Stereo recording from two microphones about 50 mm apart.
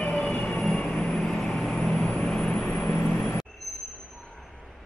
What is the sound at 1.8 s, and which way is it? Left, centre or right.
Vehicle, centre.